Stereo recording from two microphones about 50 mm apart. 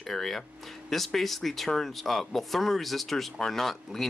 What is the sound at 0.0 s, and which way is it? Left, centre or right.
Speech, centre.